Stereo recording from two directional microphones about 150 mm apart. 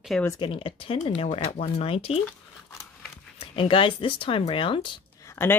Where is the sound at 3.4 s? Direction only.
35° left (ahead or behind).